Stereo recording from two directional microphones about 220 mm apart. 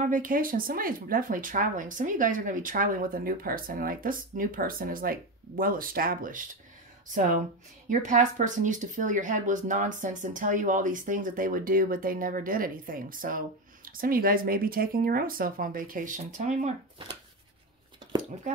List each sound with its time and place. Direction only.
0.0 s speech: 40° right (ahead or behind)
7.9 s speech: 35° right (ahead or behind)